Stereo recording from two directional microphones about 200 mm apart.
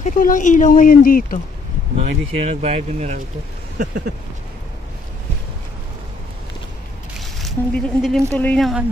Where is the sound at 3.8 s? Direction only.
50° right (ahead or behind).